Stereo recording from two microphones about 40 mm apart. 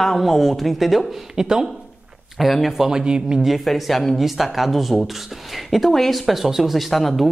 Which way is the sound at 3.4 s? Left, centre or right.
Centre.